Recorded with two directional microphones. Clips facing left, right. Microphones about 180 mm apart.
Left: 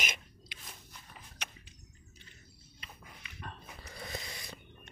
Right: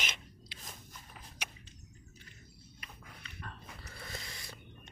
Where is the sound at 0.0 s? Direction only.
10° left (ahead or behind).